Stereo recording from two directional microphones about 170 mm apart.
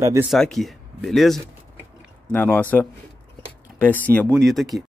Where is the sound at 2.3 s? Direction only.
10° left (ahead or behind).